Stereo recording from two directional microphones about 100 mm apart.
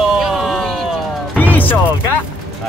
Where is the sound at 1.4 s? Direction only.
15° left (ahead or behind).